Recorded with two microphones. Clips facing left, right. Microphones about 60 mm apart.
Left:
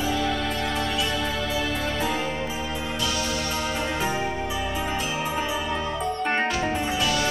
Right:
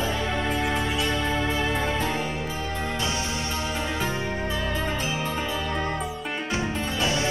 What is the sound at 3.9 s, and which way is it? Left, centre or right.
Music, centre.